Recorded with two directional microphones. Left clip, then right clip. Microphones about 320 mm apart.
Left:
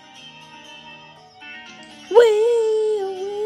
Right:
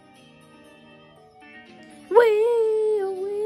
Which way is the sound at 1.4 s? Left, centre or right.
Centre.